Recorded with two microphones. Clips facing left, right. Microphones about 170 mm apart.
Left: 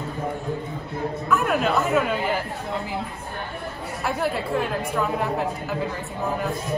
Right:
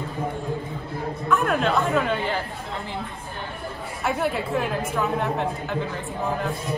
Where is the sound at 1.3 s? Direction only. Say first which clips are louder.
Even; 5° left (ahead or behind).